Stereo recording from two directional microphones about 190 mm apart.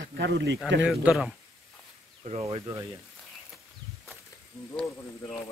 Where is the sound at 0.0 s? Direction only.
65° right (ahead or behind).